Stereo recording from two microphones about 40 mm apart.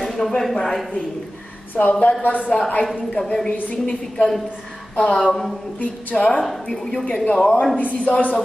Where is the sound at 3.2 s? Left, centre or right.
Left.